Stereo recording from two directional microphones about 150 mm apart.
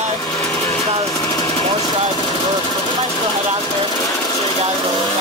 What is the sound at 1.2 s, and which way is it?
Vehicle, 25° left (ahead or behind).